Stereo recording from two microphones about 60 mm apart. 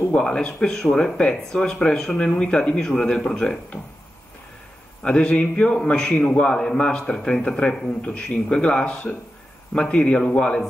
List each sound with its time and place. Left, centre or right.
0.1 s a man's voice: centre
5.0 s a man's voice: centre